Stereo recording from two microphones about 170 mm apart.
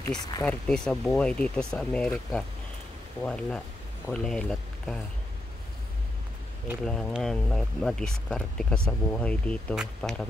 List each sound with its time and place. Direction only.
0.1 s speech: 25° left (ahead or behind)
0.4 s speech: 5° left (ahead or behind)
6.8 s speech: 5° left (ahead or behind)